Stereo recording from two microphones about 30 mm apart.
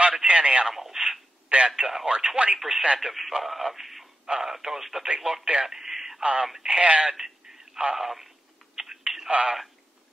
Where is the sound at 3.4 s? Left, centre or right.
Centre.